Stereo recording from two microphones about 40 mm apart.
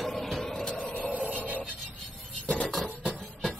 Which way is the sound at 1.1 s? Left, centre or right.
Right.